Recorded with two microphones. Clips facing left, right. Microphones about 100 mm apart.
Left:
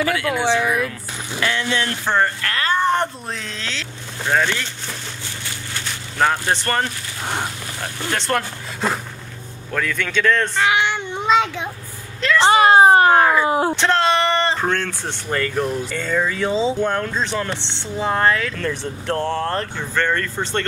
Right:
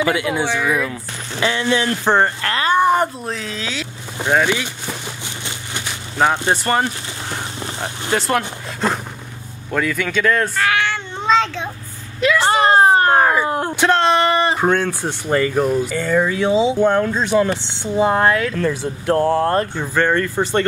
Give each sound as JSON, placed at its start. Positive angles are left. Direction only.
{"t": 0.0, "sound": "speech", "side_deg": -15}
{"t": 2.0, "sound": "speech", "side_deg": -25}
{"t": 5.4, "sound": "vehicle", "side_deg": -15}
{"t": 7.8, "sound": "speech", "side_deg": -20}
{"t": 8.2, "sound": "speech", "side_deg": -5}
{"t": 10.5, "sound": "child singing", "side_deg": 20}
{"t": 12.2, "sound": "speech", "side_deg": -10}
{"t": 12.4, "sound": "speech", "side_deg": 5}